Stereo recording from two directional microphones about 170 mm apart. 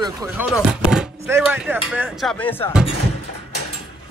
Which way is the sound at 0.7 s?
5° right (ahead or behind).